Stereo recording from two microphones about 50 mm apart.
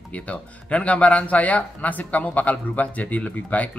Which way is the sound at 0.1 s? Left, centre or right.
Left.